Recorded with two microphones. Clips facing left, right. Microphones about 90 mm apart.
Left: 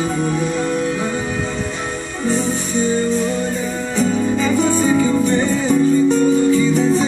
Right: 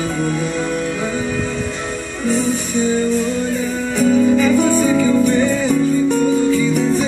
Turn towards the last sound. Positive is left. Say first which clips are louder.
# left 1 dB
turn(degrees=20)  # may be behind; listen again after turning